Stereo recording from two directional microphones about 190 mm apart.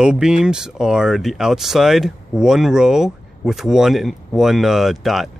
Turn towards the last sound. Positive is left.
turn(degrees=0)  # may be behind; listen again after turning